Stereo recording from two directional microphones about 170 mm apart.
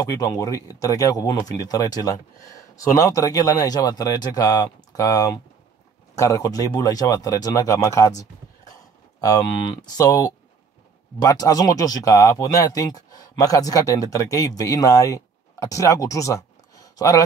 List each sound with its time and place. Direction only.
0.0 s speech: 20° left (ahead or behind)